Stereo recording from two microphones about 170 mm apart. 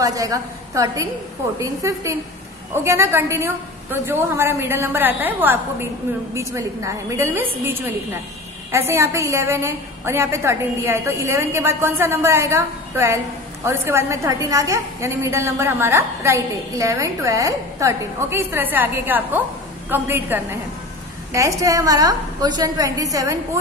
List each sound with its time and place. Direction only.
0.0 s a woman's voice: 20° right (ahead or behind)